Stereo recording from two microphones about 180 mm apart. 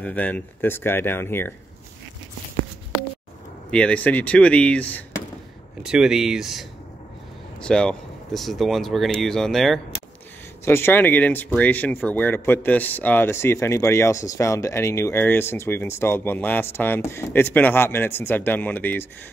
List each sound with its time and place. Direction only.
0.0 s speech: 10° left (ahead or behind)
3.7 s speech: 5° left (ahead or behind)
5.8 s speech: 5° right (ahead or behind)
10.6 s speech: 15° left (ahead or behind)